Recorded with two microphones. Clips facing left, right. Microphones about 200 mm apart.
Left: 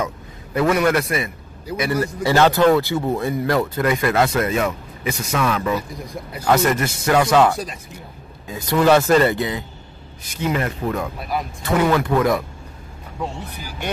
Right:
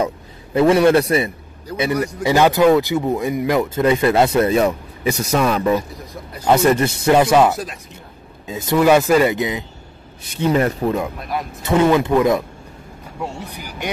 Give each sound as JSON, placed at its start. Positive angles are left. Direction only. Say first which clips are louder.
{"t": 0.0, "sound": "a man's voice", "louder": "right 4 dB", "side_deg": -25}
{"t": 1.8, "sound": "speech", "louder": "right 2 dB", "side_deg": -15}
{"t": 7.5, "sound": "speech", "louder": "right 1 dB", "side_deg": 0}
{"t": 8.5, "sound": "speech", "louder": "right 4 dB", "side_deg": -20}
{"t": 8.7, "sound": "speech", "louder": "right 1 dB", "side_deg": -10}
{"t": 10.2, "sound": "speech", "louder": "right 5 dB", "side_deg": -30}
{"t": 11.1, "sound": "speech", "louder": "even", "side_deg": 0}
{"t": 11.6, "sound": "speech", "louder": "right 4 dB", "side_deg": -20}